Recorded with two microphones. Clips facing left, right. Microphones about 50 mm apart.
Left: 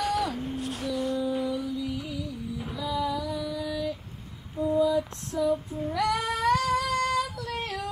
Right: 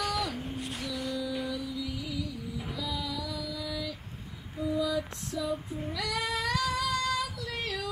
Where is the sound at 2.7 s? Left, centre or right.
Left.